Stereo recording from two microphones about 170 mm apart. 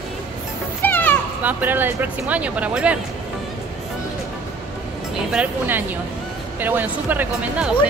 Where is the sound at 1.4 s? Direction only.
10° right (ahead or behind).